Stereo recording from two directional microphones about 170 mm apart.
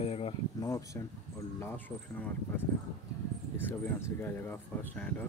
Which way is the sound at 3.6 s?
15° left (ahead or behind).